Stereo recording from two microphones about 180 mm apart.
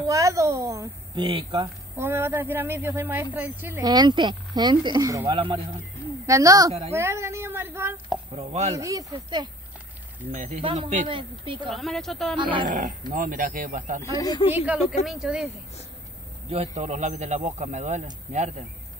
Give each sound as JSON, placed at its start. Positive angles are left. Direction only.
{"t": 0.0, "sound": "a woman's voice", "side_deg": -20}
{"t": 2.0, "sound": "speech", "side_deg": -15}
{"t": 3.8, "sound": "speech", "side_deg": -25}
{"t": 8.4, "sound": "speech", "side_deg": -35}
{"t": 8.7, "sound": "speech", "side_deg": -20}
{"t": 10.3, "sound": "speech", "side_deg": -40}
{"t": 10.6, "sound": "speech", "side_deg": -30}
{"t": 11.7, "sound": "speech", "side_deg": 0}
{"t": 12.4, "sound": "speech", "side_deg": -25}
{"t": 12.6, "sound": "speech", "side_deg": -45}
{"t": 14.1, "sound": "speech", "side_deg": 20}
{"t": 14.5, "sound": "speech", "side_deg": -10}
{"t": 16.4, "sound": "speech", "side_deg": -35}